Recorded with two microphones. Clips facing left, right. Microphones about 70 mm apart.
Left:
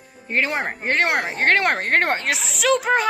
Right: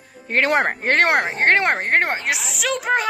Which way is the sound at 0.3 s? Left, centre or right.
Right.